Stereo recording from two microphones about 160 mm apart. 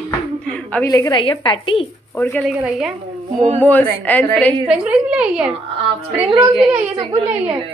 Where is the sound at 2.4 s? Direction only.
5° right (ahead or behind).